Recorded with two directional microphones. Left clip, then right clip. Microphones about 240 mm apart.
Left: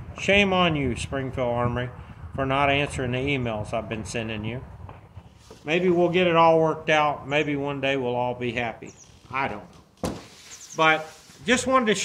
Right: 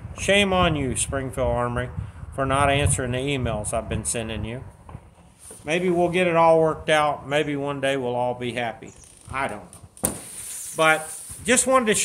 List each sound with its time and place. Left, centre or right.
0.1 s speech: centre
5.7 s a man's voice: centre